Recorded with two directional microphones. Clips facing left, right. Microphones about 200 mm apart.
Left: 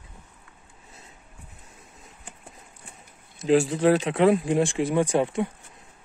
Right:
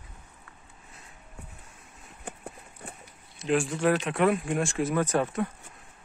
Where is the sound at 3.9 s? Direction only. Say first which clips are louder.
Left 5 dB; 25° left (ahead or behind).